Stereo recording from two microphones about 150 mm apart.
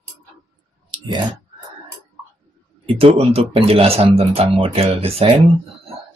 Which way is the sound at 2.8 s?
40° right (ahead or behind).